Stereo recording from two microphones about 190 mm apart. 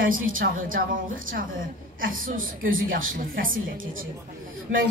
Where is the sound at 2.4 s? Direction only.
90° right.